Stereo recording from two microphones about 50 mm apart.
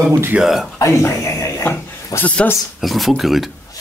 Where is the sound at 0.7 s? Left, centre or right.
Left.